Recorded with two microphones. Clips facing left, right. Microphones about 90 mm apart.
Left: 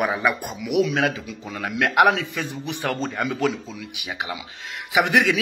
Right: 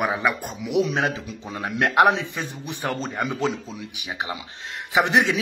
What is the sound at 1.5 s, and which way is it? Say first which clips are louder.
A man's voice: even; 25° right (ahead or behind).